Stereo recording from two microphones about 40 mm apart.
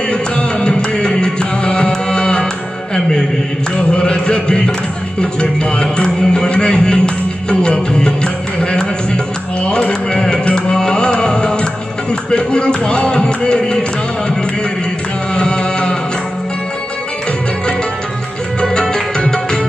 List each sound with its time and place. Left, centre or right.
0.1 s music: left
3.9 s chant: left
5.2 s music: left
15.3 s music: left
18.6 s music: left